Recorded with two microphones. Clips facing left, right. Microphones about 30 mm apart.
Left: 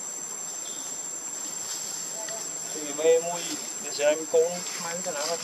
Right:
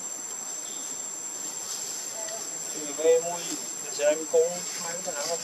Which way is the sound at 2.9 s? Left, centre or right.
Left.